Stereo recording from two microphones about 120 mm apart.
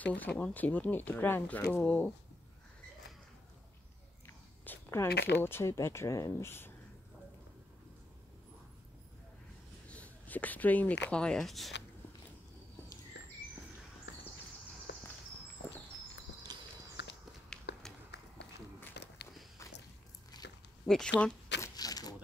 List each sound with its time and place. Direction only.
0.0 s speech: 10° left (ahead or behind)
4.3 s speech: 20° left (ahead or behind)
9.8 s speech: 10° left (ahead or behind)
16.5 s horse: 35° right (ahead or behind)
17.5 s a sound: 5° left (ahead or behind)
20.8 s speech: 5° left (ahead or behind)
21.5 s a sound: 30° left (ahead or behind)